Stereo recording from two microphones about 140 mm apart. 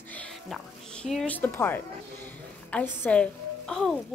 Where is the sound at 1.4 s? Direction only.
15° left (ahead or behind).